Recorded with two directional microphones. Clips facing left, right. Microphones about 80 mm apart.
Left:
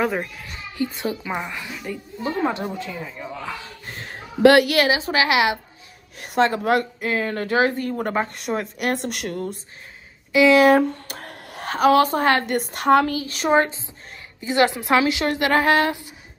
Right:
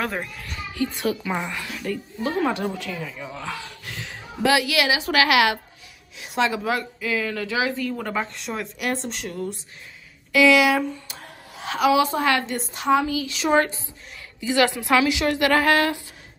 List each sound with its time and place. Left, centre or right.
0.0 s a woman's voice: centre
4.4 s a woman's voice: left
4.8 s a woman's voice: left
6.1 s a woman's voice: left
8.0 s a woman's voice: left
8.3 s a woman's voice: left
10.5 s a woman's voice: left
10.8 s a sound: left
11.7 s a woman's voice: left
12.4 s a woman's voice: left
13.1 s a woman's voice: left
13.5 s a woman's voice: left